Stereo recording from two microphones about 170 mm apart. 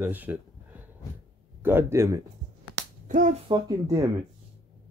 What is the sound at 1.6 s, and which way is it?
Speech, 15° right (ahead or behind).